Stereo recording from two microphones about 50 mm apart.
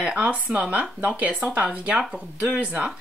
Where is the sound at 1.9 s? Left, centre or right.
Centre.